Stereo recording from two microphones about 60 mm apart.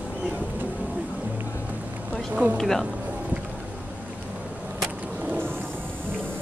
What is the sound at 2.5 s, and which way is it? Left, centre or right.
Speech, centre.